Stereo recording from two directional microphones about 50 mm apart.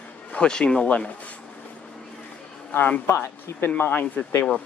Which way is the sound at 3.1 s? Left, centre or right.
Left.